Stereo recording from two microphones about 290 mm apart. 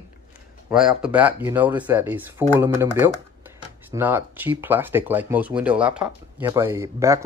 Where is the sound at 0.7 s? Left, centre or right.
Centre.